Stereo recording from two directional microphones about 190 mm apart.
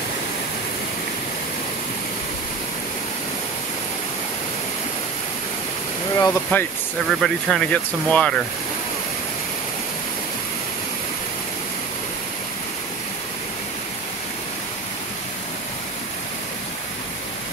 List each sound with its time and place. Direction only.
6.1 s speech: 15° left (ahead or behind)
7.1 s speech: centre (ahead or behind)